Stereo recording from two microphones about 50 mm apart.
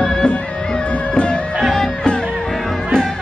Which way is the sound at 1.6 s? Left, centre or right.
Centre.